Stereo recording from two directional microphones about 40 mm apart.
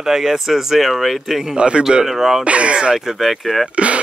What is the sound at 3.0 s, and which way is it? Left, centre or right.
Speech, centre.